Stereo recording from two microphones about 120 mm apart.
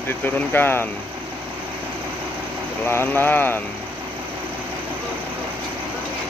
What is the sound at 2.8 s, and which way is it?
Speech, 20° left (ahead or behind).